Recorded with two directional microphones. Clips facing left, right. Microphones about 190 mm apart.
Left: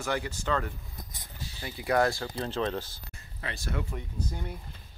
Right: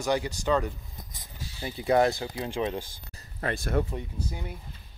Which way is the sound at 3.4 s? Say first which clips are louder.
Right 8 dB; 50° right (ahead or behind).